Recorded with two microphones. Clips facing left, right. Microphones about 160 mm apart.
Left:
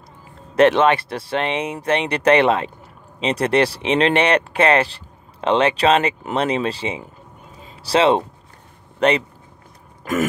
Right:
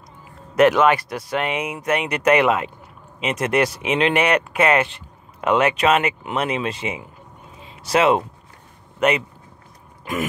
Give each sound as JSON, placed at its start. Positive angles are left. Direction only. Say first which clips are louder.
{"t": 0.6, "sound": "speech", "louder": "left 1 dB", "side_deg": 25}
{"t": 10.1, "sound": "speech", "louder": "left 5 dB", "side_deg": 45}